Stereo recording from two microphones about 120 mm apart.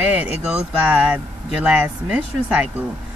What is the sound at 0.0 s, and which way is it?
Speech, 15° right (ahead or behind).